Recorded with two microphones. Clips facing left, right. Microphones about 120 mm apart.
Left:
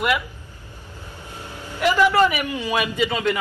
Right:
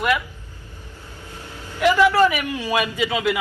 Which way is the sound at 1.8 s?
5° left (ahead or behind).